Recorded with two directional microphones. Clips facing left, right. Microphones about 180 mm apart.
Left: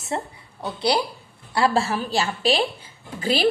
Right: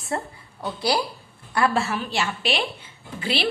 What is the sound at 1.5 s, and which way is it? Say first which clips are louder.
A woman's voice: left 2 dB; 30° left (ahead or behind).